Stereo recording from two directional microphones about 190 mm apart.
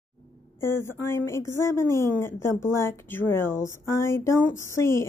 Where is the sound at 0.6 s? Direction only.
15° left (ahead or behind).